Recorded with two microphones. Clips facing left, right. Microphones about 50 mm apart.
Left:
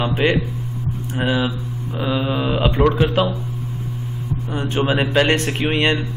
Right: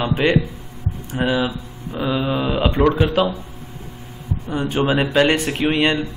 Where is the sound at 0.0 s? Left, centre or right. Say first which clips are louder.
Right 1 dB; centre.